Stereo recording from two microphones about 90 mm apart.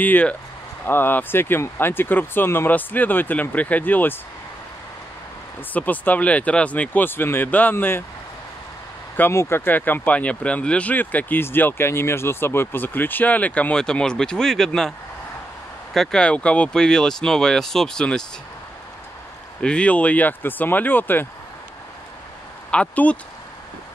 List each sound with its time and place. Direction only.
0.0 s speech: 15° left (ahead or behind)
5.7 s speech: 20° left (ahead or behind)
9.3 s speech: 30° left (ahead or behind)
9.7 s speech: 20° left (ahead or behind)
19.6 s speech: 10° left (ahead or behind)
22.7 s speech: 15° left (ahead or behind)